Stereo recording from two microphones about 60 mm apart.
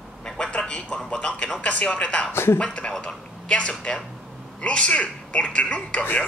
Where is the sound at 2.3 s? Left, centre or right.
Left.